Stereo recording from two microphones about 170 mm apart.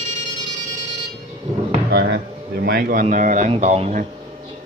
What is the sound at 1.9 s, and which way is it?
Speech, 65° right (ahead or behind).